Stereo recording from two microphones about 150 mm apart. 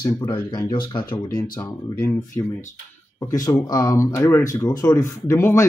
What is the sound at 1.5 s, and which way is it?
Speech, 20° left (ahead or behind).